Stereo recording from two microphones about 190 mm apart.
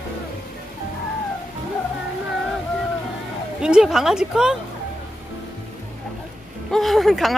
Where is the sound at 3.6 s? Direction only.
5° right (ahead or behind).